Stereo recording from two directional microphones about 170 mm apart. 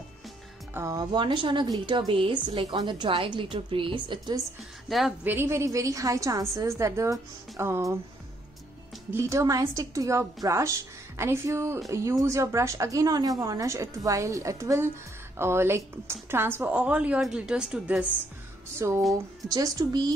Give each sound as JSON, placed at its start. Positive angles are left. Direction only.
{"t": 0.7, "sound": "a woman's voice", "side_deg": -20}
{"t": 4.8, "sound": "a woman's voice", "side_deg": 0}
{"t": 5.2, "sound": "a woman's voice", "side_deg": -15}
{"t": 9.1, "sound": "a woman's voice", "side_deg": -15}
{"t": 18.8, "sound": "a woman's voice", "side_deg": -15}